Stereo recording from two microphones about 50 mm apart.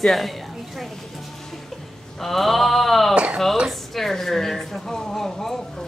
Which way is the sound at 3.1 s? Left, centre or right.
Right.